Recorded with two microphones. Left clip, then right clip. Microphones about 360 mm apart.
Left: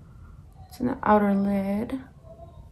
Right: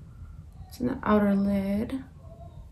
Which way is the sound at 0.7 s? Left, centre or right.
Centre.